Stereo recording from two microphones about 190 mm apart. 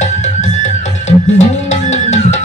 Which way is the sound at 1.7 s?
35° left (ahead or behind).